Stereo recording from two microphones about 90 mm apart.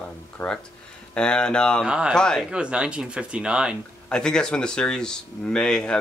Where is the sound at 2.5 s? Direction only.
10° right (ahead or behind).